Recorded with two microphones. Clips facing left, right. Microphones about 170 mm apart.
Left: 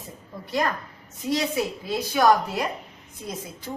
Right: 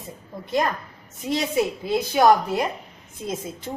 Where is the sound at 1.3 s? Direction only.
25° right (ahead or behind).